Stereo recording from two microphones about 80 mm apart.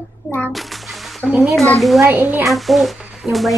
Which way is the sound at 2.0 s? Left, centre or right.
Right.